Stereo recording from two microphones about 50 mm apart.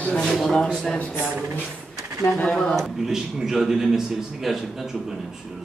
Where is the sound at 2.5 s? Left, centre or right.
Centre.